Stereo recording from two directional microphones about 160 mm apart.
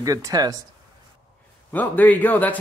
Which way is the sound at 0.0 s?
20° right (ahead or behind).